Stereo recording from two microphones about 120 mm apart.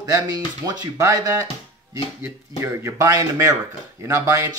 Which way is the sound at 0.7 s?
30° right (ahead or behind).